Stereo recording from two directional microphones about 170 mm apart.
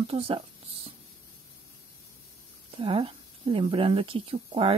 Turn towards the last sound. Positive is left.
turn(degrees=-35)  # may be behind; listen again after turning